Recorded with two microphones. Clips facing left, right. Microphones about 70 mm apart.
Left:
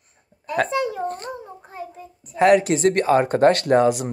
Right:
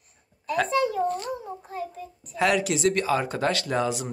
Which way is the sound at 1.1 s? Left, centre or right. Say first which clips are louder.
Right 1 dB; left.